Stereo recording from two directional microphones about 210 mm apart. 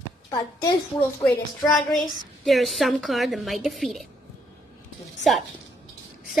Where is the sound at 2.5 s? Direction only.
Centre (ahead or behind).